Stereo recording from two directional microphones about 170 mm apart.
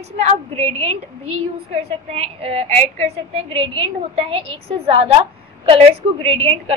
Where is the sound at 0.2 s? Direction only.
40° right (ahead or behind).